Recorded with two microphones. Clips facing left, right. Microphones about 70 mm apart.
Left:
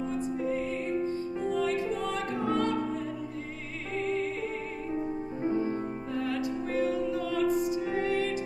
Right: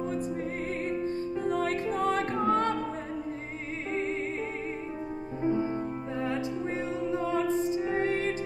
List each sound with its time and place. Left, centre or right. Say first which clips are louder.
1.5 s music: left 1 dB; right
5.4 s music: right 2 dB; centre
6.7 s music: left 5 dB; right